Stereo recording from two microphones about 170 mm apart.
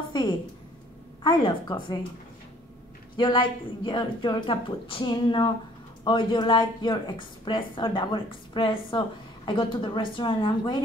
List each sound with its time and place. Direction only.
0.1 s a sound: 25° left (ahead or behind)
1.2 s a woman's voice: 25° left (ahead or behind)
3.2 s a woman's voice: 25° left (ahead or behind)